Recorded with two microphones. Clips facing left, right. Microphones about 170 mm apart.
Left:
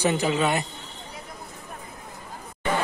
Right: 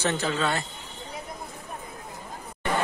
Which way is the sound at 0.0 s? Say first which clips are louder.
Left 4 dB; 15° left (ahead or behind).